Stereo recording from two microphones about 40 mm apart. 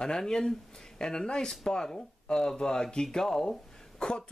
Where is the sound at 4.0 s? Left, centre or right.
Left.